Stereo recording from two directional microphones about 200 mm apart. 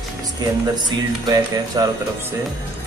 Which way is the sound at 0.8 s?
20° right (ahead or behind).